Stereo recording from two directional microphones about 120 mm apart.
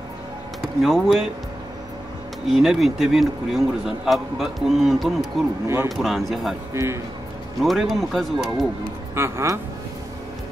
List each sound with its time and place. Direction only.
0.6 s speech: centre (ahead or behind)
2.4 s a man's voice: centre (ahead or behind)
6.7 s speech: 25° right (ahead or behind)
7.6 s a man's voice: centre (ahead or behind)
9.1 s speech: 20° right (ahead or behind)